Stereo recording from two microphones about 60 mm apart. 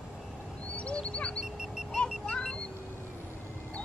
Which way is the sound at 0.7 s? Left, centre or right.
Left.